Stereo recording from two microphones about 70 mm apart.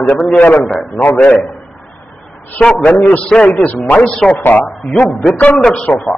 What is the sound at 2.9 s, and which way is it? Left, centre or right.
Speech, left.